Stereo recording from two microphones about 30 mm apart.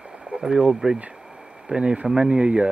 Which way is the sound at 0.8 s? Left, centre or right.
Right.